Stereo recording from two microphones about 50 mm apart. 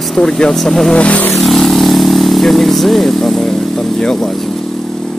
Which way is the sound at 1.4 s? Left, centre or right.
Centre.